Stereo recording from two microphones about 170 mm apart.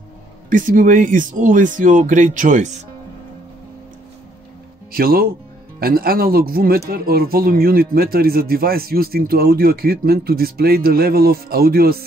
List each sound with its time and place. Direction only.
0.5 s speech: 50° right (ahead or behind)
4.9 s speech: 60° right (ahead or behind)